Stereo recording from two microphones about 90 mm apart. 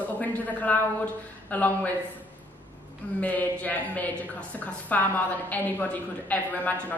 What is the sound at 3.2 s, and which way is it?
A woman's voice, 20° left (ahead or behind).